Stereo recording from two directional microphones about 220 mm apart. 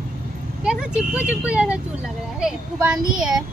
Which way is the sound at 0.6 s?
5° right (ahead or behind).